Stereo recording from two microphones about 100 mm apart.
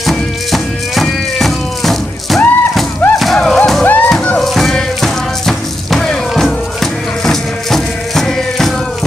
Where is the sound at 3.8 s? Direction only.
15° left (ahead or behind).